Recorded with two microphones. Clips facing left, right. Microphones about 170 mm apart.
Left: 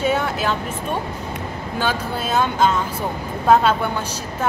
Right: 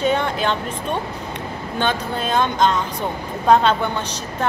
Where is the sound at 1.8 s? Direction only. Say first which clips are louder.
Right 1 dB; 5° left (ahead or behind).